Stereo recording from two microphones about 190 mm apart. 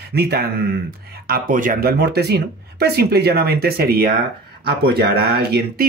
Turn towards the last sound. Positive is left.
turn(degrees=-55)  # may be behind; listen again after turning